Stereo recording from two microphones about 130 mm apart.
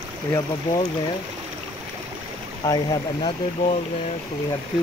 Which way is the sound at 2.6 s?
30° left (ahead or behind).